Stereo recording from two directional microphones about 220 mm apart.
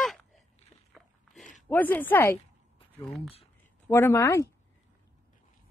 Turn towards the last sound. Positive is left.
turn(degrees=15)  # may be behind; listen again after turning